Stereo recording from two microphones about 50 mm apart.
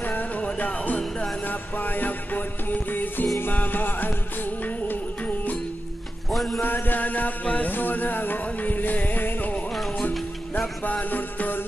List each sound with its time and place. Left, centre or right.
0.0 s music: left
6.3 s music: centre
6.6 s music: left
10.9 s music: left